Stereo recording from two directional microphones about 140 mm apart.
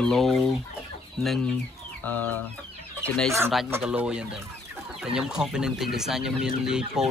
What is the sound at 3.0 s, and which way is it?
Speech, 5° left (ahead or behind).